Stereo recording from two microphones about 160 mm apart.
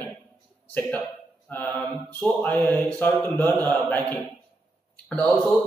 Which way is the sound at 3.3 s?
25° right (ahead or behind).